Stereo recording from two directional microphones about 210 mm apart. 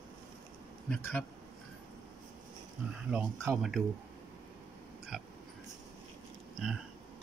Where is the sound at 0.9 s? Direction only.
5° left (ahead or behind).